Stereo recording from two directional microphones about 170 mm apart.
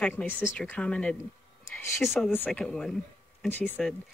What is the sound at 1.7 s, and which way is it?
Speech, 15° left (ahead or behind).